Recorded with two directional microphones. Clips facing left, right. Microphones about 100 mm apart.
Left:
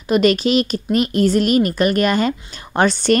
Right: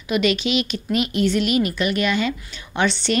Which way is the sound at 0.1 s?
40° left (ahead or behind).